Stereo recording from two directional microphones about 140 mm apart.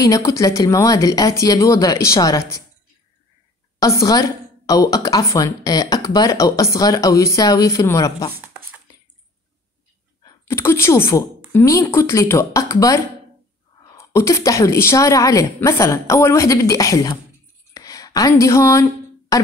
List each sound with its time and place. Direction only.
0.0 s a woman's voice: 25° left (ahead or behind)
3.8 s a woman's voice: 25° left (ahead or behind)
10.2 s a woman's voice: 20° left (ahead or behind)
17.7 s a sound: 25° left (ahead or behind)